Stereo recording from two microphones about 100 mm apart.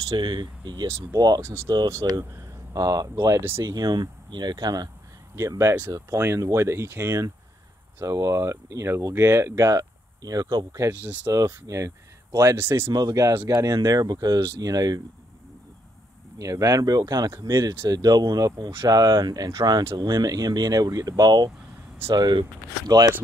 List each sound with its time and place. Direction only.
0.1 s speech: 50° right (ahead or behind)
1.9 s speech: 30° right (ahead or behind)
3.4 s speech: 25° right (ahead or behind)
3.7 s speech: 45° right (ahead or behind)
5.3 s speech: 30° right (ahead or behind)
12.9 s speech: 35° right (ahead or behind)
16.3 s speech: 35° right (ahead or behind)